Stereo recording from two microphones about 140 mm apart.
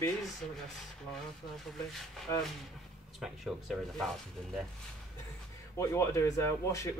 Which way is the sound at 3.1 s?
Centre (ahead or behind).